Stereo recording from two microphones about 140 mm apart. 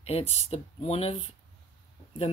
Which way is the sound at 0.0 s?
45° left (ahead or behind).